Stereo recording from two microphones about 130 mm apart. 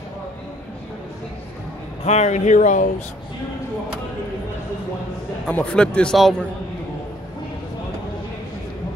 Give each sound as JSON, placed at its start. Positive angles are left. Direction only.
{"t": 2.0, "sound": "speech", "side_deg": 60}
{"t": 5.5, "sound": "a man's voice", "side_deg": 10}